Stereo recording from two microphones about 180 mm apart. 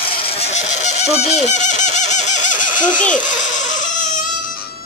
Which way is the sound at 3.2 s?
45° left (ahead or behind).